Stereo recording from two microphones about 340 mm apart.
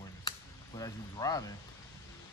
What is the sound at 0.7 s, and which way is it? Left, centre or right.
Speech, centre.